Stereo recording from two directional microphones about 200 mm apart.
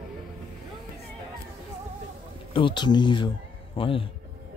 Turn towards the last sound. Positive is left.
turn(degrees=25)  # may be behind; listen again after turning